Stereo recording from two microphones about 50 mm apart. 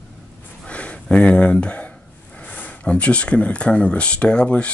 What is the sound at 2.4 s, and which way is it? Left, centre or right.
Speech, left.